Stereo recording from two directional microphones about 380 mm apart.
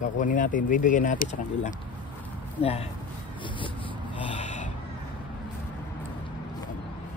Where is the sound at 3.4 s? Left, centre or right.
Centre.